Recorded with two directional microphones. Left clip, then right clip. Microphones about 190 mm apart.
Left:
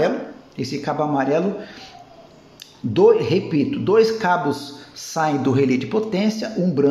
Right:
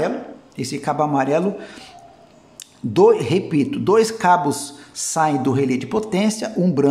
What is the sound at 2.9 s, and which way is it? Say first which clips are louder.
A man's voice: even; 20° right (ahead or behind).